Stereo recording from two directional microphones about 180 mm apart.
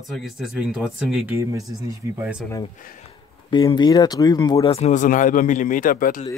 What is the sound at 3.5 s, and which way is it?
Speech, 25° left (ahead or behind).